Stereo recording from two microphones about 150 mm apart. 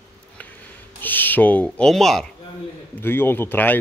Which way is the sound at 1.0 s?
10° left (ahead or behind).